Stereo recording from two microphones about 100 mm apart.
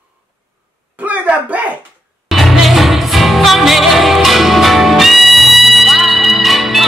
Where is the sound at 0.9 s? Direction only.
15° right (ahead or behind).